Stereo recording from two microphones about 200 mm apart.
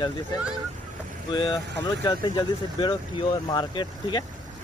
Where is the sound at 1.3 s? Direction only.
20° left (ahead or behind).